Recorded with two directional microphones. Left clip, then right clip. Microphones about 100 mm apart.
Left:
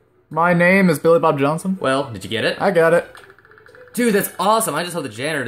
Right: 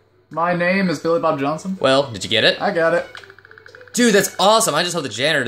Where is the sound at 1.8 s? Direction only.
55° right (ahead or behind).